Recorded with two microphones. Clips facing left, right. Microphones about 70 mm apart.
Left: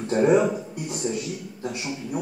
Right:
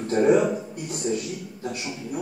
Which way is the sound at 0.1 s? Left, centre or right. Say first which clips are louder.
Even; centre.